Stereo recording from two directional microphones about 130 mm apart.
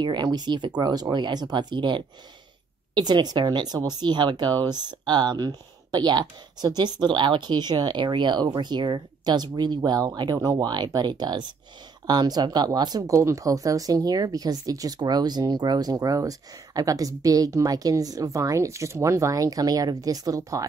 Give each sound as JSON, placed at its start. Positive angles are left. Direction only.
{"t": 0.0, "sound": "speech", "side_deg": -35}